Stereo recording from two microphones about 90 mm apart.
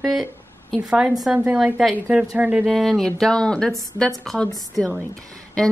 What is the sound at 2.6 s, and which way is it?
A woman's voice, centre (ahead or behind).